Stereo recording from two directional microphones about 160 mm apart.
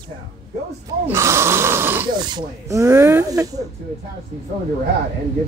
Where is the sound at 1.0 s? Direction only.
15° right (ahead or behind).